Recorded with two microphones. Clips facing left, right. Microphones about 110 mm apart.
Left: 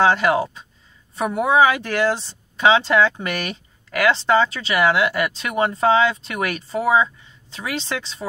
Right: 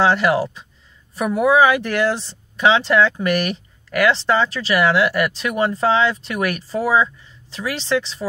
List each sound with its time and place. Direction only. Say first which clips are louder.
0.0 s speech: even; 20° left (ahead or behind)